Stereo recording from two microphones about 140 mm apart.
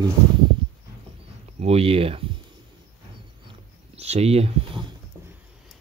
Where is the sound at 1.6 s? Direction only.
45° right (ahead or behind).